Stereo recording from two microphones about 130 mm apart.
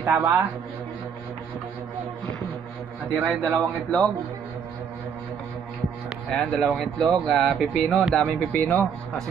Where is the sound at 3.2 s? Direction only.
5° left (ahead or behind).